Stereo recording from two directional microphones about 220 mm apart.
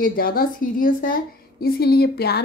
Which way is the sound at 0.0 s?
40° left (ahead or behind).